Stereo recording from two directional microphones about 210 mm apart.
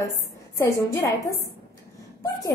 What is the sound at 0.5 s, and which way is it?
A woman's voice, 15° left (ahead or behind).